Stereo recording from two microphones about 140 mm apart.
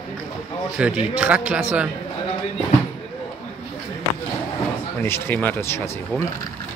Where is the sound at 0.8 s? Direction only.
10° right (ahead or behind).